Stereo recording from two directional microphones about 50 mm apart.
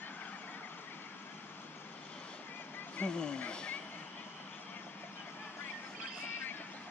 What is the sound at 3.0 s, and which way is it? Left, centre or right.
Speech, centre.